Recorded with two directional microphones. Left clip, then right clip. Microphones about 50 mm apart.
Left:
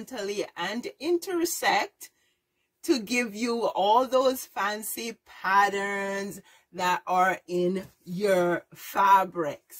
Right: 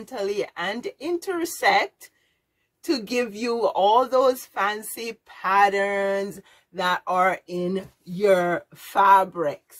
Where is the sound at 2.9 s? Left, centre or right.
Left.